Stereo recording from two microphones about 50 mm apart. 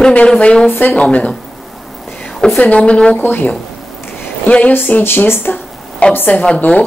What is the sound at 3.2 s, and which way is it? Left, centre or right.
A woman's voice, left.